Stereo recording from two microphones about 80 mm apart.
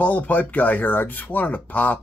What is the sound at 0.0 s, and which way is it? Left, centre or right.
Speech, centre.